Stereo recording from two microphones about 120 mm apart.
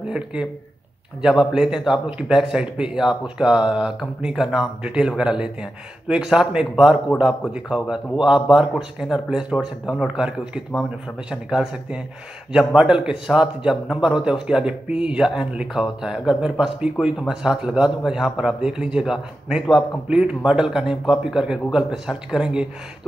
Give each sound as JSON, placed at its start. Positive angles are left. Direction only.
{"t": 0.1, "sound": "a man's voice", "side_deg": -10}